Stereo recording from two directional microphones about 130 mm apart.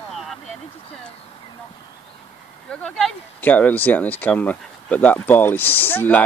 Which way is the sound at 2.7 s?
5° left (ahead or behind).